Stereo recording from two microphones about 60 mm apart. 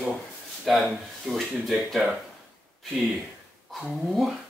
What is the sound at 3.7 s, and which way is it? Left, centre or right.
Speech, centre.